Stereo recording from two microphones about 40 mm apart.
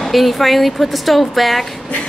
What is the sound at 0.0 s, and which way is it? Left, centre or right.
Speech, centre.